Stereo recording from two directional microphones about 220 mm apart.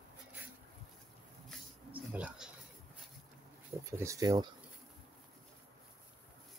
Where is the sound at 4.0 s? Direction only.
15° right (ahead or behind).